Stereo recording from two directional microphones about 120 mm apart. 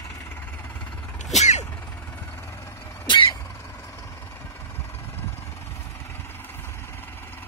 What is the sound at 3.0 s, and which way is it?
Vehicle, 40° left (ahead or behind).